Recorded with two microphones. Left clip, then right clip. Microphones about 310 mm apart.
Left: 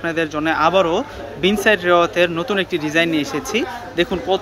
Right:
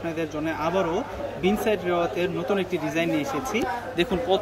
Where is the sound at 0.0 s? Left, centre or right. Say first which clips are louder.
Left 8 dB; centre.